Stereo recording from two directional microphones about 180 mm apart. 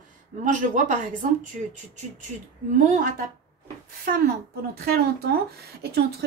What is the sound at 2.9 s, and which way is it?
Speech, 45° right (ahead or behind).